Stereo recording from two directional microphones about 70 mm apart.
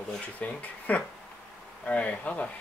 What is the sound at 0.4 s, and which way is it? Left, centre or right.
Speech, left.